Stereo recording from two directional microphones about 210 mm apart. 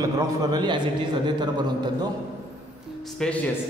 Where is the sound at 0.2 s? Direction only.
20° right (ahead or behind).